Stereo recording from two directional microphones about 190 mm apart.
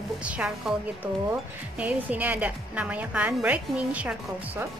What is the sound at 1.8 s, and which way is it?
A woman's voice, 10° right (ahead or behind).